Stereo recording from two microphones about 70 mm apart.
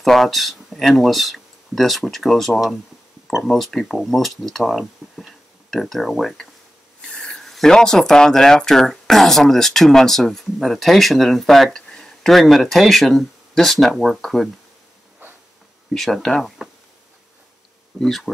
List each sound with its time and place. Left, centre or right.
0.0 s speech: centre
7.0 s speech: centre
15.9 s speech: centre
18.0 s speech: centre